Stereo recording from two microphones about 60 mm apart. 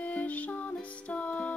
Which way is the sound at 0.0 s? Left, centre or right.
Left.